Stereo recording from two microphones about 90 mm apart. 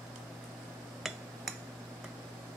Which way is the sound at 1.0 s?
Centre (ahead or behind).